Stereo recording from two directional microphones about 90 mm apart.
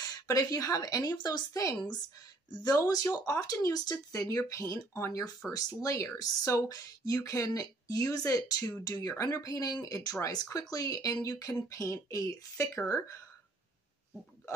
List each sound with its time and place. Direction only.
0.0 s a woman's voice: 45° left (ahead or behind)
1.5 s speech: 35° left (ahead or behind)
1.8 s speech: 50° left (ahead or behind); by 13.2 s 35° left (ahead or behind)